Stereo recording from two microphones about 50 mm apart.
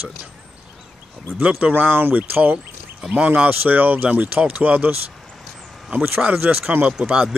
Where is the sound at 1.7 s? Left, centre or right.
Right.